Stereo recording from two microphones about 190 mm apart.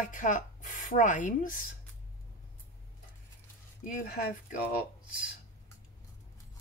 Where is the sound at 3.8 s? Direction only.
45° left (ahead or behind).